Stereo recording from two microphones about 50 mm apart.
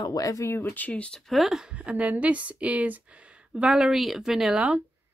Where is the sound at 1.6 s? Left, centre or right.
Right.